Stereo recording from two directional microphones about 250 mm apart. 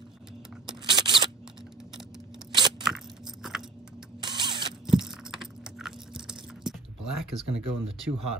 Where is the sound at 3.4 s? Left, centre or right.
Centre.